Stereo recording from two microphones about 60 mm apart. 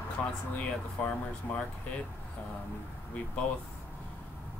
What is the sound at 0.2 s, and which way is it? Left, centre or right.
Speech, centre.